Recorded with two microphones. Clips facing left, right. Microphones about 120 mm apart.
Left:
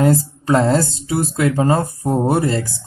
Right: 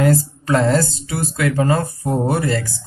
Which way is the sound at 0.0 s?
20° left (ahead or behind).